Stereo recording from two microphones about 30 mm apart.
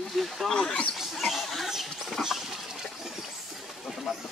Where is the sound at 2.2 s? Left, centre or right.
Centre.